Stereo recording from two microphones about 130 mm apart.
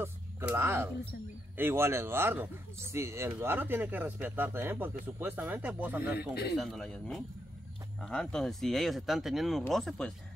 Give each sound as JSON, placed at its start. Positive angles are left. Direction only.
{"t": 0.0, "sound": "music", "side_deg": -20}
{"t": 1.6, "sound": "speech", "side_deg": -20}
{"t": 6.5, "sound": "speech", "side_deg": 0}